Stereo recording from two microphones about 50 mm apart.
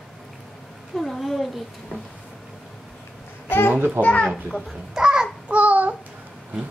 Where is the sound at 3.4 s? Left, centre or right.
Left.